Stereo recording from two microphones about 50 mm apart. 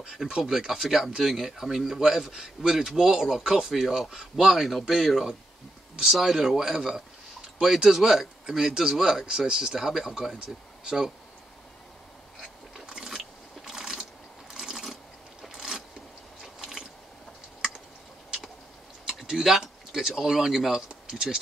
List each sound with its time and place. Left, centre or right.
0.4 s speech: centre
12.8 s ratchet: centre
14.5 s a sound: centre
16.5 s gears: centre
19.1 s speech: centre